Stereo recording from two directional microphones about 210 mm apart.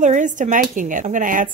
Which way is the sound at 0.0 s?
35° right (ahead or behind).